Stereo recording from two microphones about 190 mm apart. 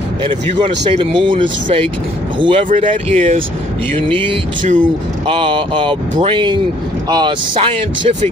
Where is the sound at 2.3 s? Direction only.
25° right (ahead or behind).